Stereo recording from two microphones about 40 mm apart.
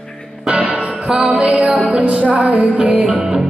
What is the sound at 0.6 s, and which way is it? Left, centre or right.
Music, right.